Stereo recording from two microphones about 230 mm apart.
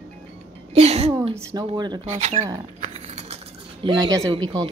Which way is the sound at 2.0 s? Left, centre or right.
Right.